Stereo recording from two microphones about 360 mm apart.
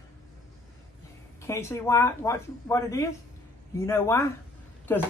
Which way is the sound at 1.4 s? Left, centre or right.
Centre.